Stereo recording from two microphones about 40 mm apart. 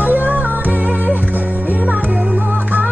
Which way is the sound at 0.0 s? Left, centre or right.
Right.